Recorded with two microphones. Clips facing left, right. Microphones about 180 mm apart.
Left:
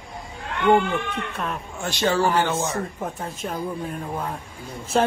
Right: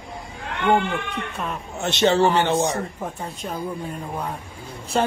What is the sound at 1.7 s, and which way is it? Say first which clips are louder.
Speech: right 4 dB; 25° right (ahead or behind).